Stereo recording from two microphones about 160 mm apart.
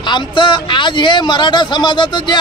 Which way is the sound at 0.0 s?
30° left (ahead or behind).